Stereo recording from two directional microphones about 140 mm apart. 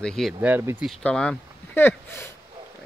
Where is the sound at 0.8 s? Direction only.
5° left (ahead or behind).